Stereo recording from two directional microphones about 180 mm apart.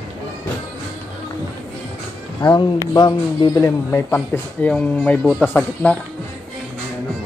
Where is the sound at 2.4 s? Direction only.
25° left (ahead or behind); by 5.9 s 5° left (ahead or behind).